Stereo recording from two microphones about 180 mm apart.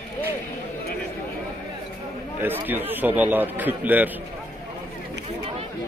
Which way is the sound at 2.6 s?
10° right (ahead or behind).